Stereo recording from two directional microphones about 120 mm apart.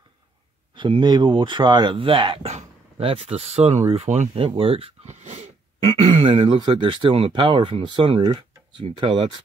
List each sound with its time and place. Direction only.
0.7 s speech: 40° right (ahead or behind)
2.5 s dog: 50° right (ahead or behind)
3.3 s speech: 60° right (ahead or behind)
4.5 s speech: 55° right (ahead or behind)
5.2 s speech: 70° right (ahead or behind); by 9.4 s 45° right (ahead or behind)